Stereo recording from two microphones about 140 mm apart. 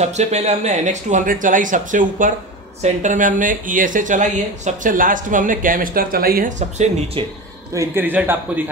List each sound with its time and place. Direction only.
0.0 s speech: 55° right (ahead or behind); by 6.5 s 90° right
7.2 s speech: 40° right (ahead or behind)
7.7 s a man's voice: 20° right (ahead or behind)